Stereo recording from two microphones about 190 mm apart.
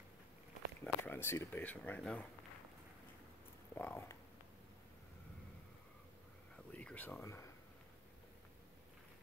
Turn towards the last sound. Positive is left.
turn(degrees=15)  # may be behind; listen again after turning